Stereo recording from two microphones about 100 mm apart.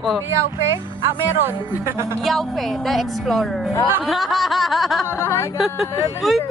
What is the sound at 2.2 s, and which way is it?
Speech, centre (ahead or behind).